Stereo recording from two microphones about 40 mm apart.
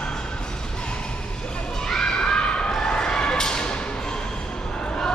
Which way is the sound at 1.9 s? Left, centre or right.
Centre.